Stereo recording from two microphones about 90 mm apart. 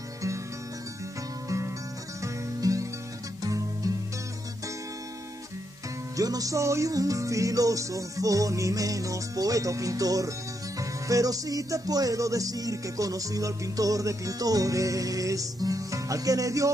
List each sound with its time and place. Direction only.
2.2 s music: 40° right (ahead or behind)
6.1 s music: 40° right (ahead or behind)